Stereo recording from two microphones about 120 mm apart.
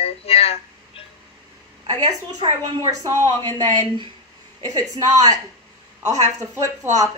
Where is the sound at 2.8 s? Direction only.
30° right (ahead or behind).